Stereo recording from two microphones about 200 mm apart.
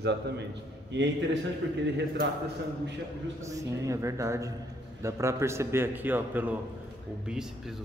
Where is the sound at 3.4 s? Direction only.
15° right (ahead or behind).